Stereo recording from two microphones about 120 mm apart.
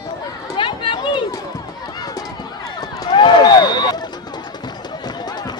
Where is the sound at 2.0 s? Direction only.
30° left (ahead or behind).